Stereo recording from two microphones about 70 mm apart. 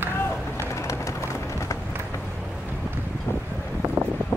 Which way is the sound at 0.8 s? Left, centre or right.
Left.